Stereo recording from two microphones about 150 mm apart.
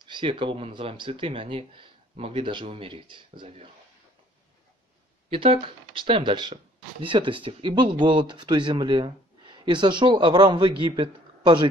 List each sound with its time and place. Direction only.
0.0 s speech: 30° right (ahead or behind)
5.3 s speech: 35° right (ahead or behind)